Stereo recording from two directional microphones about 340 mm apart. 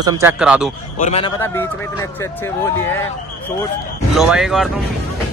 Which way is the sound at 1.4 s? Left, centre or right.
Centre.